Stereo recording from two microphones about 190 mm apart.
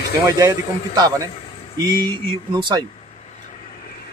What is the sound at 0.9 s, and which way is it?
Speech, 20° right (ahead or behind).